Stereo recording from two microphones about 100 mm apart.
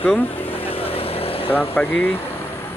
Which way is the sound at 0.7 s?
70° left (ahead or behind).